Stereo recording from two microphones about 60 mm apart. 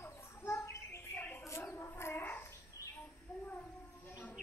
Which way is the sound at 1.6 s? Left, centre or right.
Left.